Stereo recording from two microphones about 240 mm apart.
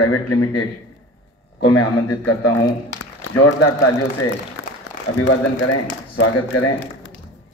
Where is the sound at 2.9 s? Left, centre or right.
Left.